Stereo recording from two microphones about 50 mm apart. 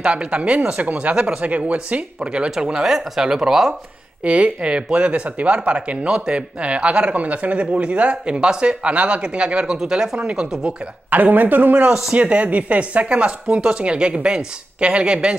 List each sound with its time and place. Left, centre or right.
0.0 s speech: right
4.2 s speech: right
11.1 s speech: right